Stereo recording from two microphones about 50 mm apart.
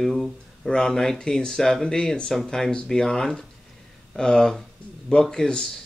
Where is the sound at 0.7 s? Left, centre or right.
Centre.